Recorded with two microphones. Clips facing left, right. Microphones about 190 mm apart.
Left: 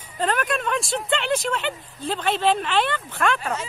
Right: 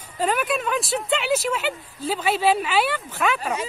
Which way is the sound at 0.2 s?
5° right (ahead or behind).